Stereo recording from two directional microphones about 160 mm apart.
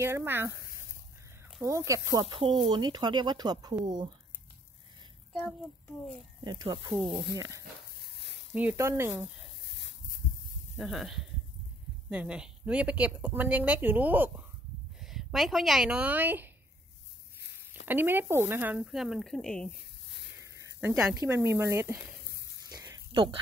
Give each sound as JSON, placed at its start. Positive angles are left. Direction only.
{"t": 0.0, "sound": "a woman's voice", "side_deg": -15}
{"t": 1.9, "sound": "speech", "side_deg": -25}
{"t": 6.4, "sound": "speech", "side_deg": -25}
{"t": 7.0, "sound": "speech", "side_deg": 0}
{"t": 7.3, "sound": "a woman's voice", "side_deg": -20}
{"t": 9.1, "sound": "speech", "side_deg": 0}
{"t": 9.8, "sound": "a sound", "side_deg": 90}
{"t": 10.8, "sound": "a woman's voice", "side_deg": 0}
{"t": 17.8, "sound": "speech", "side_deg": -10}
{"t": 20.1, "sound": "a sound", "side_deg": 90}
{"t": 20.3, "sound": "a sound", "side_deg": -20}
{"t": 20.9, "sound": "a woman's voice", "side_deg": -10}
{"t": 22.7, "sound": "a sound", "side_deg": -25}